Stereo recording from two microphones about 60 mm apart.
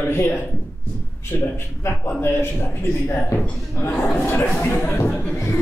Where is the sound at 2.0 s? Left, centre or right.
Left.